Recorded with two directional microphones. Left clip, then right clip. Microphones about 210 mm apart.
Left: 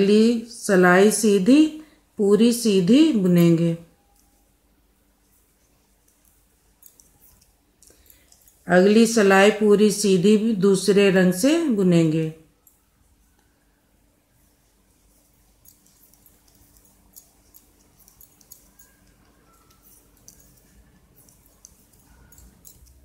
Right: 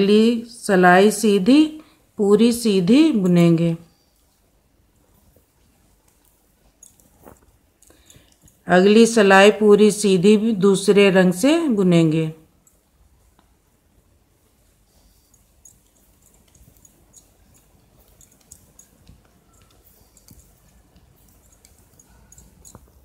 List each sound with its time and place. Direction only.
0.0 s a woman's voice: 15° right (ahead or behind)
8.6 s speech: 20° right (ahead or behind)